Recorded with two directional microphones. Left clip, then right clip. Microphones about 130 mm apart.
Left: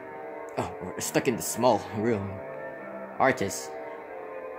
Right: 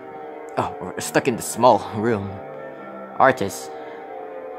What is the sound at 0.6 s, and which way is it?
Speech, 30° right (ahead or behind).